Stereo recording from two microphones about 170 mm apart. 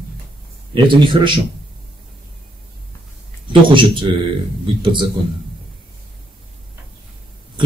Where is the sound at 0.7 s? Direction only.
30° right (ahead or behind).